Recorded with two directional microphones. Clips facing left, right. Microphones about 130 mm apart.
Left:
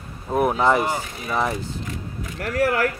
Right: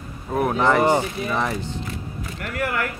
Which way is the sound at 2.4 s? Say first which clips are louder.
Left 5 dB; 40° left (ahead or behind).